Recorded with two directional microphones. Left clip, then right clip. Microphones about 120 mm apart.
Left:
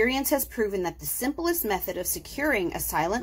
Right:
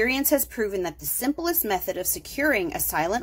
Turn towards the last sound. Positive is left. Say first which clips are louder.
# right 2 dB
turn(degrees=-20)  # may be behind; listen again after turning